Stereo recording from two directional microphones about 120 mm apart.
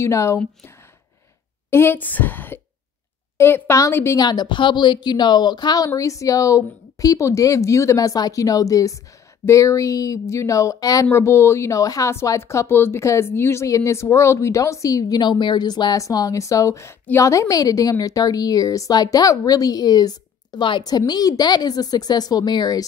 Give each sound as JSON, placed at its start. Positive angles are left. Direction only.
{"t": 0.0, "sound": "a woman's voice", "side_deg": 25}
{"t": 1.7, "sound": "a woman's voice", "side_deg": 20}
{"t": 4.2, "sound": "a woman's voice", "side_deg": 35}